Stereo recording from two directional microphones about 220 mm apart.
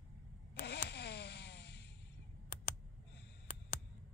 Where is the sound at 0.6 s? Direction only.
50° left (ahead or behind).